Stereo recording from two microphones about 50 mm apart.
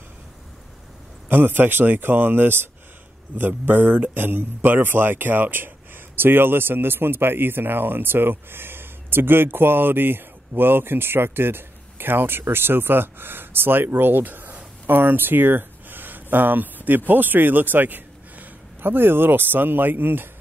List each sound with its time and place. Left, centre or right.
1.3 s a man's voice: right